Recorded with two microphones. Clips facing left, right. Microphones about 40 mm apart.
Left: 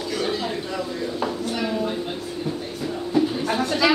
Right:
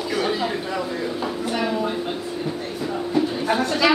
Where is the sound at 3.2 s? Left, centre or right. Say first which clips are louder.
Even; centre.